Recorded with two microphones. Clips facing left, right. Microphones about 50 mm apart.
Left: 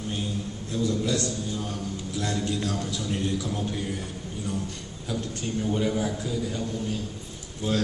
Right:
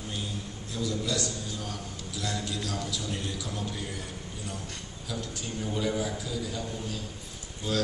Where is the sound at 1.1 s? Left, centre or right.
Left.